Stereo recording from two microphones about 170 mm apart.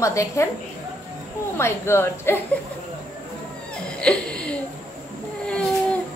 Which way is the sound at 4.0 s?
5° left (ahead or behind).